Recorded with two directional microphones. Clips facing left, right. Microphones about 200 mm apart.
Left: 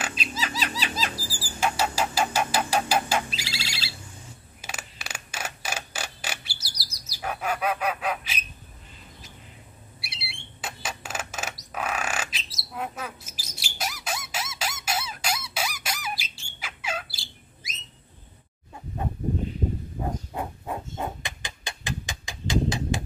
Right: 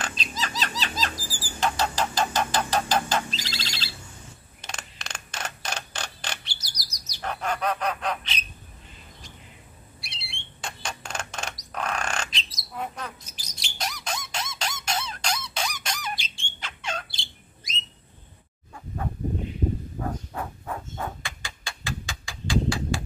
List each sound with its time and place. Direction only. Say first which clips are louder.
0.0 s music: left 1 dB; 10° left (ahead or behind)
1.3 s a sound: even; 10° left (ahead or behind)
4.6 s mechanisms: even; 5° left (ahead or behind)
9.9 s squawk: left 2 dB; 5° left (ahead or behind)
13.6 s squeak: even; 5° left (ahead or behind)
20.0 s a sound: left 1 dB; 20° left (ahead or behind)